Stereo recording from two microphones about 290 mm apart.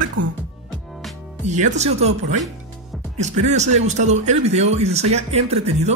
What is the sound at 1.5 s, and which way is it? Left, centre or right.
Speech, right.